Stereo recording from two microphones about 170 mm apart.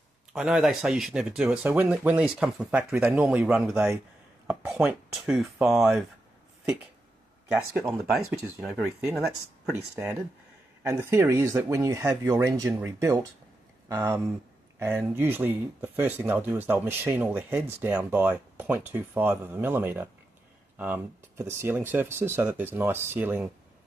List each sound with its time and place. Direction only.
0.3 s speech: 5° right (ahead or behind)
8.0 s speech: 5° right (ahead or behind)
10.8 s speech: 15° right (ahead or behind)